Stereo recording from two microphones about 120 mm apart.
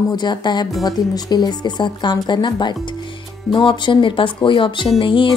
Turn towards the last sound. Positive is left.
turn(degrees=45)  # may be behind; listen again after turning